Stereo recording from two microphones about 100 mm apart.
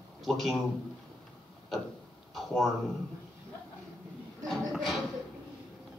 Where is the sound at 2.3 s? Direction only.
Centre (ahead or behind).